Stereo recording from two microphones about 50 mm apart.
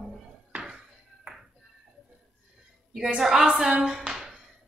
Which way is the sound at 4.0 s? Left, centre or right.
Centre.